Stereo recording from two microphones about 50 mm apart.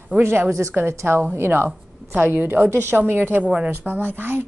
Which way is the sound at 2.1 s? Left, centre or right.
Right.